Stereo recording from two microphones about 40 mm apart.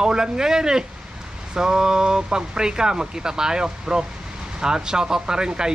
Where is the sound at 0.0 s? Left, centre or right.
Centre.